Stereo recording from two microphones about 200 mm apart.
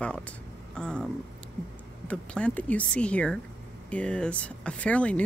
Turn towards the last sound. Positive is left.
turn(degrees=5)  # may be behind; listen again after turning